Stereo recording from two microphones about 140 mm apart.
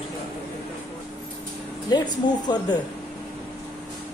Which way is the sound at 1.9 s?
30° left (ahead or behind).